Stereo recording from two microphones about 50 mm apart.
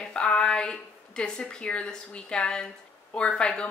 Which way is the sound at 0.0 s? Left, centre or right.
Centre.